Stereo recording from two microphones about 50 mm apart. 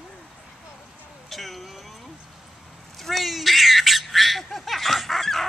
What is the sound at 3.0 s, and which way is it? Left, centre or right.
Bird, centre.